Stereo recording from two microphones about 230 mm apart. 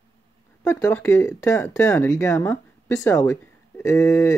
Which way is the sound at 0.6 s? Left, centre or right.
Centre.